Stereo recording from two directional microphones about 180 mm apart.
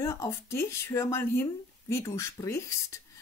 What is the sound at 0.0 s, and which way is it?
Speech, 15° left (ahead or behind).